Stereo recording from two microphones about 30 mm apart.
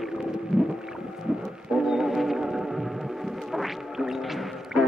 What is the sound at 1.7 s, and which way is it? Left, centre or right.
Music, centre.